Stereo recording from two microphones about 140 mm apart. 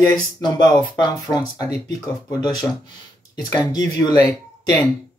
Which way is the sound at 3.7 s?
25° left (ahead or behind).